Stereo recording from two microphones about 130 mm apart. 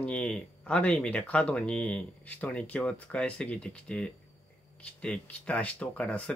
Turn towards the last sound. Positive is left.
turn(degrees=10)  # may be behind; listen again after turning